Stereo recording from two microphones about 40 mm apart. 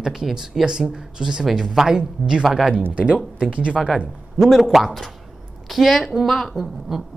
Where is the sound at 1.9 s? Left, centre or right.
Right.